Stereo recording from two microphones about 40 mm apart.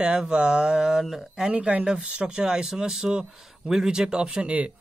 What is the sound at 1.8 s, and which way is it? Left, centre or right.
Speech, right.